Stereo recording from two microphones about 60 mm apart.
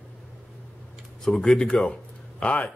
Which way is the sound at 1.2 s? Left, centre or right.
Centre.